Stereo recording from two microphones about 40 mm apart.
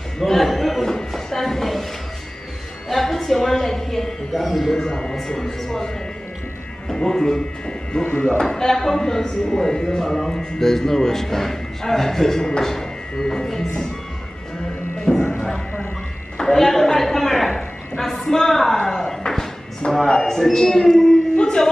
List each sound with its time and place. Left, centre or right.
0.2 s a sound: centre
2.9 s a sound: centre
4.3 s speech: centre
4.8 s speech: centre
6.9 s speech: centre
15.1 s music: centre
16.3 s a sound: centre
20.2 s speech: centre
21.4 s music: centre